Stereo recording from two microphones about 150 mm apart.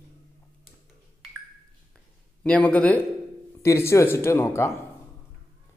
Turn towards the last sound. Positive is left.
turn(degrees=20)  # may be behind; listen again after turning